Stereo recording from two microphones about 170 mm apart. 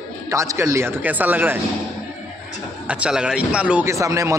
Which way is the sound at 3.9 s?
20° right (ahead or behind).